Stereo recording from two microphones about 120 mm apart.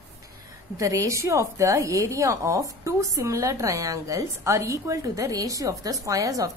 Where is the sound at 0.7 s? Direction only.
25° right (ahead or behind).